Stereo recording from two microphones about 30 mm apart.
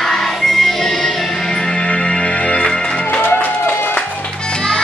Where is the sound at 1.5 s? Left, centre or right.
Left.